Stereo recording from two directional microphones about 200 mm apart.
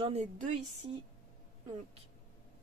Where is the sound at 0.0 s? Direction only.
30° right (ahead or behind).